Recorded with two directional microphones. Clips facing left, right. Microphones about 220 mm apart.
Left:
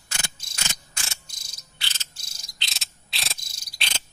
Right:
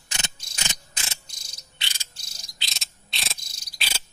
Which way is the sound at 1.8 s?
10° right (ahead or behind).